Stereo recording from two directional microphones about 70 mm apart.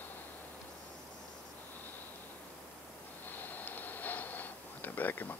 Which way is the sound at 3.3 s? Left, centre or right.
Left.